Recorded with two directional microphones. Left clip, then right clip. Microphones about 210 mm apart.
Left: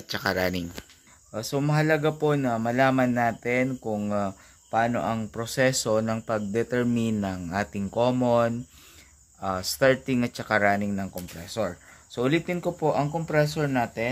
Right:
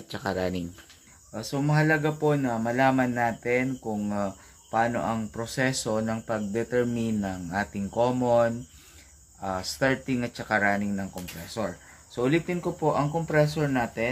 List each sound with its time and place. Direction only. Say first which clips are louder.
0.1 s speech: left 3 dB; 10° left (ahead or behind)
1.3 s speech: left 1 dB; 50° left (ahead or behind)